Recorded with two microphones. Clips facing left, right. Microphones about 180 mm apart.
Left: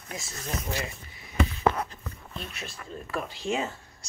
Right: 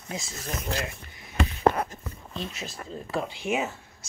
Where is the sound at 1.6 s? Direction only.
50° right (ahead or behind).